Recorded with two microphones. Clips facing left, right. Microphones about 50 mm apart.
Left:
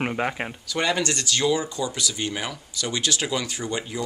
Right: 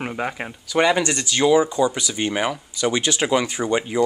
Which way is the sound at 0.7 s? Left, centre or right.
Centre.